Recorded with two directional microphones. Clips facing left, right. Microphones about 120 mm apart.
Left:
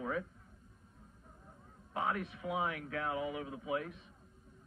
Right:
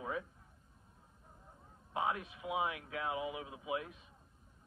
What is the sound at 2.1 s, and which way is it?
Speech, 40° left (ahead or behind).